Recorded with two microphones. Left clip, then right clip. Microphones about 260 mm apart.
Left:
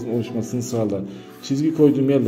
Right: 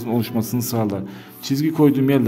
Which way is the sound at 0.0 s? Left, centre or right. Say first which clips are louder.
Right 2 dB; right.